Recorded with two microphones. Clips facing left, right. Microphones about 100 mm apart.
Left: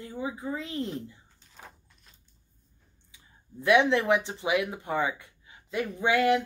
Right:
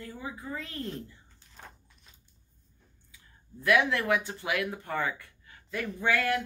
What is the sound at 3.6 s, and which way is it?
Speech, 20° left (ahead or behind).